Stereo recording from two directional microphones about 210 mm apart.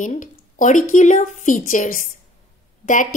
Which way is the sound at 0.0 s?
35° left (ahead or behind).